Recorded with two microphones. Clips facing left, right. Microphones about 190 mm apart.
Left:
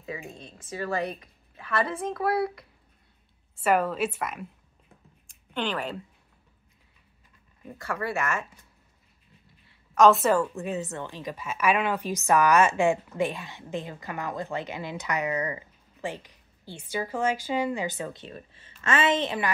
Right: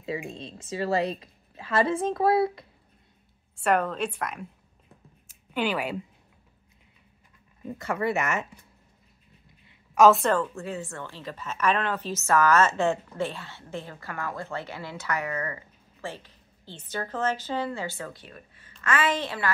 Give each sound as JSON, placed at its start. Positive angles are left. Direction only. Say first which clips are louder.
{"t": 0.2, "sound": "a woman's voice", "louder": "right 5 dB", "side_deg": -25}
{"t": 3.5, "sound": "a woman's voice", "louder": "left 1 dB", "side_deg": 5}
{"t": 5.2, "sound": "a sound", "louder": "right 3 dB", "side_deg": -5}
{"t": 7.7, "sound": "a woman's voice", "louder": "right 4 dB", "side_deg": -20}
{"t": 9.9, "sound": "a woman's voice", "louder": "right 1 dB", "side_deg": -5}
{"t": 10.2, "sound": "a woman's voice", "louder": "left 2 dB", "side_deg": 10}